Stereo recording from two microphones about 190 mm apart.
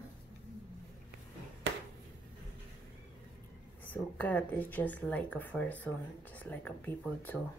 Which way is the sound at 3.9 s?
10° left (ahead or behind).